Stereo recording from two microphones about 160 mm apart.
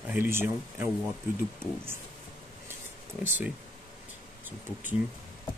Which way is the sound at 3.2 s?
10° right (ahead or behind).